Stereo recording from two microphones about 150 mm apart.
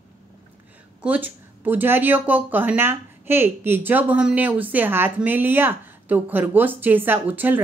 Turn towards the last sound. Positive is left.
turn(degrees=-10)  # may be behind; listen again after turning